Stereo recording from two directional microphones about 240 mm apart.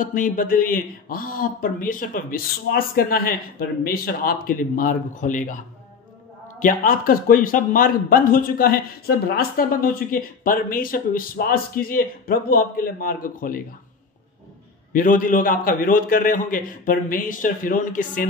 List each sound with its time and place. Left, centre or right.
0.0 s a man's voice: left
6.6 s a man's voice: left
14.9 s a man's voice: left